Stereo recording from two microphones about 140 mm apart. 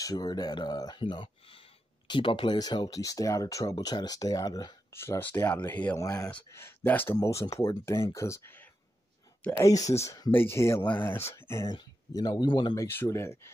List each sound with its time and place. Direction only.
0.0 s speech: 30° left (ahead or behind)
4.9 s speech: 15° left (ahead or behind)
6.0 s speech: 25° left (ahead or behind)
10.3 s speech: 15° left (ahead or behind)
11.7 s speech: 30° left (ahead or behind)
12.8 s speech: 15° left (ahead or behind)